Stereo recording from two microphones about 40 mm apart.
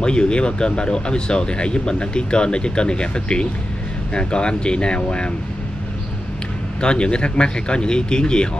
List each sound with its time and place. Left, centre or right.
0.0 s speech: left
6.8 s speech: left